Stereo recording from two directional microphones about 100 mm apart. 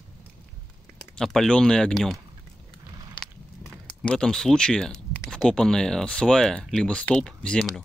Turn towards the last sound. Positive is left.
turn(degrees=5)  # may be behind; listen again after turning